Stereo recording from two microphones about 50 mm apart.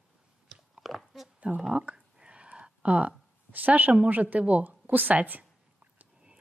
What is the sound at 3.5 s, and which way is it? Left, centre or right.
Speech, right.